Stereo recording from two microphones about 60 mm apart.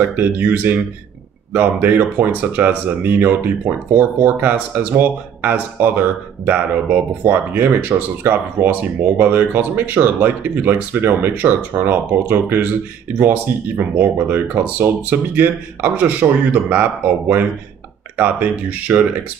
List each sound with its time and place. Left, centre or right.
0.1 s speech: right